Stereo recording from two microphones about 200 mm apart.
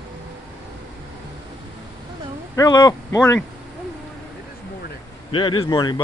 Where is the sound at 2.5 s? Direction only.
20° left (ahead or behind).